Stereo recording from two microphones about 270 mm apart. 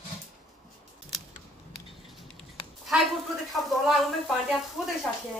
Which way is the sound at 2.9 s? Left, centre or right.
Centre.